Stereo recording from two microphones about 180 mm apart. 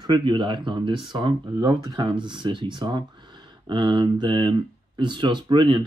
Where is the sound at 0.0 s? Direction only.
25° right (ahead or behind).